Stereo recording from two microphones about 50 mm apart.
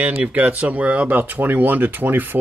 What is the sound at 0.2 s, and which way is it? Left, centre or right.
Speech, right.